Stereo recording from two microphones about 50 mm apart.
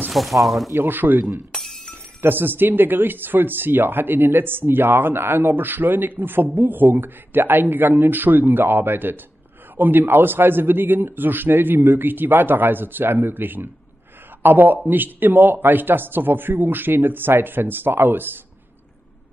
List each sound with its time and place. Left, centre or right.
0.1 s speech: centre
0.7 s speech: right
1.5 s glass: centre
2.2 s a man's voice: right